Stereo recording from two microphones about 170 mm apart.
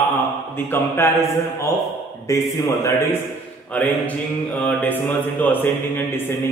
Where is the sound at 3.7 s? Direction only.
10° left (ahead or behind).